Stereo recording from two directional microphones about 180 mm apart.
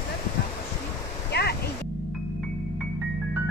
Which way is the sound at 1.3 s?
65° left (ahead or behind).